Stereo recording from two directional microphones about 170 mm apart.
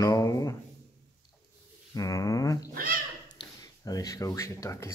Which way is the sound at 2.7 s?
55° right (ahead or behind).